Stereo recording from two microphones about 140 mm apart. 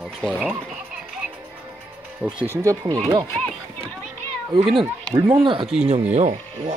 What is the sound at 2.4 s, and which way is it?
Speech, 20° right (ahead or behind).